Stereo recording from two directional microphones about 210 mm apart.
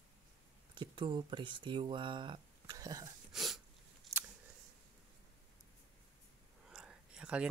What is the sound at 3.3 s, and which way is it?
Sneeze, centre (ahead or behind).